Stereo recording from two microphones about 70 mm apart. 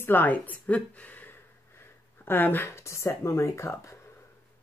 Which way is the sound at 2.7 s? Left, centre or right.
Left.